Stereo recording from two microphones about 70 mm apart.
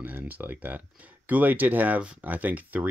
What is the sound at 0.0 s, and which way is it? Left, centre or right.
Speech, right.